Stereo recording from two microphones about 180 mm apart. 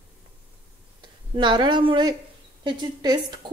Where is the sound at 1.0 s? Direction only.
25° right (ahead or behind).